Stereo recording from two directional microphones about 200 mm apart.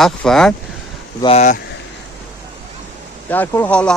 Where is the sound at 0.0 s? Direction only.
Centre (ahead or behind).